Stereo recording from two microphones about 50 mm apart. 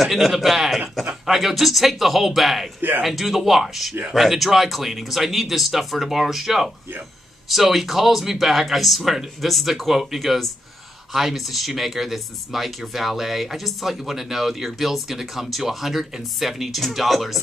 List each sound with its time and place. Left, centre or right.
0.0 s speech: centre